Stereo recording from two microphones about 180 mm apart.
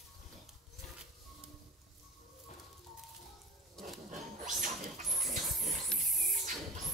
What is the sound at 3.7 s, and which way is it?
Dog, centre (ahead or behind).